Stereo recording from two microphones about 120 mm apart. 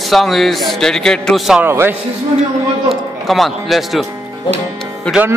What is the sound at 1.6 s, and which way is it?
Speech, 20° right (ahead or behind).